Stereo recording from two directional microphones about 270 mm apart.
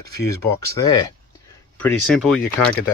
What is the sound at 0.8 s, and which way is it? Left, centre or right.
Speech, centre.